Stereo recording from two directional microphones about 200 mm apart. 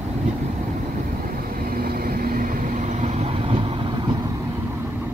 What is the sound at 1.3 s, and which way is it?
Vehicle, 45° right (ahead or behind).